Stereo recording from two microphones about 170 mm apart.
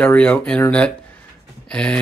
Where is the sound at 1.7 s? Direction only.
5° left (ahead or behind).